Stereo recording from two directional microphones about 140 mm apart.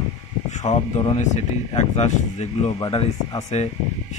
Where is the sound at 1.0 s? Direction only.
55° left (ahead or behind).